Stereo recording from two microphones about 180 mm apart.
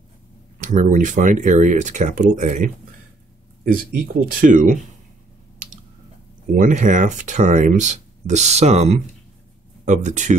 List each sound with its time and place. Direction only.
0.6 s speech: 45° right (ahead or behind)
6.4 s speech: 50° right (ahead or behind)